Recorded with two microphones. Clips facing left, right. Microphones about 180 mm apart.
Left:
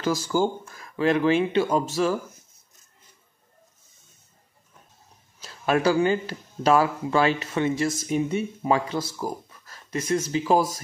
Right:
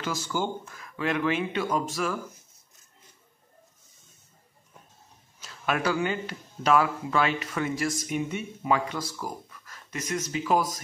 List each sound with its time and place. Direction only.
0.0 s speech: 35° left (ahead or behind)
5.4 s speech: 35° left (ahead or behind)